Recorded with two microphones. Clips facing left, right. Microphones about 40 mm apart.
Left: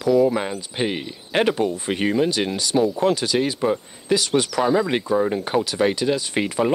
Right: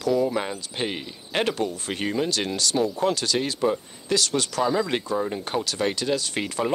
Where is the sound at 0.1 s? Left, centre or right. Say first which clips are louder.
Left 6 dB; centre.